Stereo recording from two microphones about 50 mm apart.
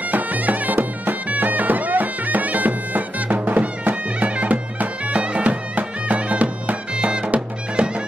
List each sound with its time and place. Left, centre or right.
0.1 s bagpipes: right